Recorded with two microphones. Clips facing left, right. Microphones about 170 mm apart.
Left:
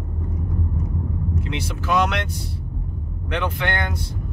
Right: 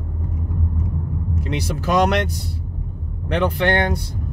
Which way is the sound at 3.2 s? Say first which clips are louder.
Right 6 dB; 35° right (ahead or behind).